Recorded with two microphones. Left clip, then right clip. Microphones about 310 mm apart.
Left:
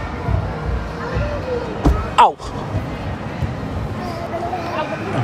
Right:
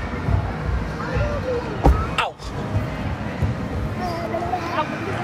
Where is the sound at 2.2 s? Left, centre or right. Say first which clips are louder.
Left 13 dB; left.